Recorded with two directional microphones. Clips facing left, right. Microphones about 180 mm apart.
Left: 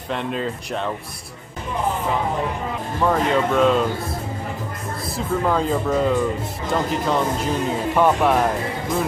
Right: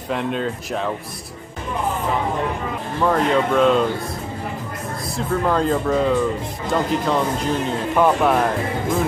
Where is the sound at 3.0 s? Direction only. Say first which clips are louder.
Right 1 dB; centre (ahead or behind).